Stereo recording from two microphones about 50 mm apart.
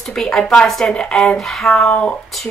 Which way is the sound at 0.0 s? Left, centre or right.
Centre.